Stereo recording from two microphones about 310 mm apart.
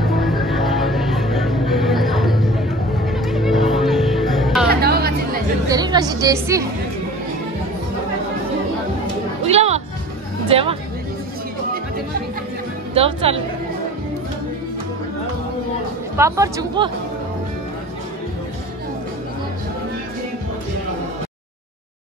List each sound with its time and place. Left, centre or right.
0.2 s music: centre
4.6 s music: right
5.7 s a woman's voice: centre
9.5 s music: centre
10.5 s speech: centre
12.9 s a woman's voice: centre
16.2 s speech: centre